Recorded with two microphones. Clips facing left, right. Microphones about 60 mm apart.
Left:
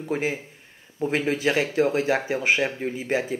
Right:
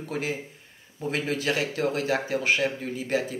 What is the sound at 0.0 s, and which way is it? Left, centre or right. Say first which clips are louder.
Speech: left 4 dB; left.